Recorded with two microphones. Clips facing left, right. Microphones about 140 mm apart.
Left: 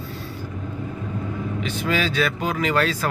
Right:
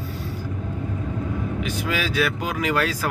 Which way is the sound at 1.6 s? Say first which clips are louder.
Left 5 dB; 10° right (ahead or behind).